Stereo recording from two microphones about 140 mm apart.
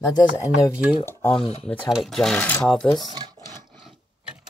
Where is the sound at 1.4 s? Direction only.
40° left (ahead or behind).